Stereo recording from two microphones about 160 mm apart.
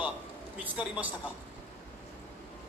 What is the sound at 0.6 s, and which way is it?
Speech, 10° right (ahead or behind).